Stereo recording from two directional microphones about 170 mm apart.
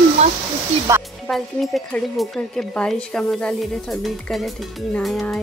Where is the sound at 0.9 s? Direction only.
15° right (ahead or behind).